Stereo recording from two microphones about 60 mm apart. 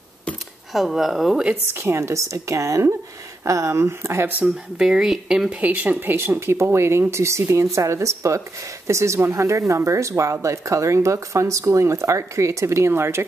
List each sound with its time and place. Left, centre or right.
0.7 s speech: centre
1.7 s speech: right
4.7 s speech: centre
5.6 s speech: right